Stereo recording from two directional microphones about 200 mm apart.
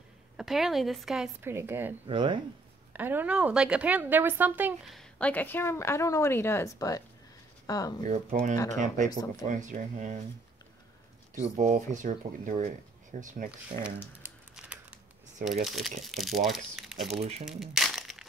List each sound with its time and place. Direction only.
0.4 s a woman's voice: centre (ahead or behind)
2.0 s speech: 25° right (ahead or behind)
2.9 s a woman's voice: 10° right (ahead or behind); by 7.9 s 20° left (ahead or behind)
8.1 s speech: 40° right (ahead or behind)
11.3 s speech: 35° right (ahead or behind)
14.2 s crumpling: 5° right (ahead or behind)
15.4 s a woman's voice: centre (ahead or behind)
17.5 s crumpling: centre (ahead or behind)